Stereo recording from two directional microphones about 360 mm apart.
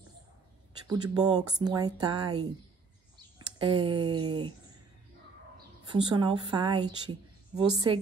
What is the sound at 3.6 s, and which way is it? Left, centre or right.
Speech, centre.